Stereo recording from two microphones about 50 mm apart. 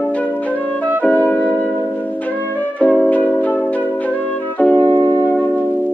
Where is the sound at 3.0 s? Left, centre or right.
Left.